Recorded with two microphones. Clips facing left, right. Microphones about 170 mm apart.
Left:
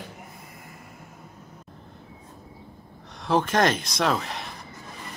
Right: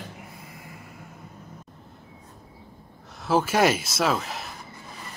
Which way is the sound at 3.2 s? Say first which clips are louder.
Right 1 dB; 5° right (ahead or behind).